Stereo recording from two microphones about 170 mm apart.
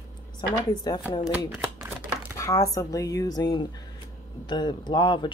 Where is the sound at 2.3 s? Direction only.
20° left (ahead or behind).